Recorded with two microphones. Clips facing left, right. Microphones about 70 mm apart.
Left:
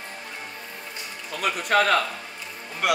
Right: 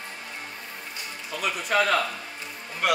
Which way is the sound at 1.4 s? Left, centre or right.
Left.